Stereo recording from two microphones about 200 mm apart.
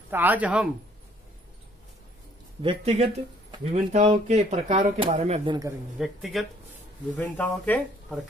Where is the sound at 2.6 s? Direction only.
30° right (ahead or behind).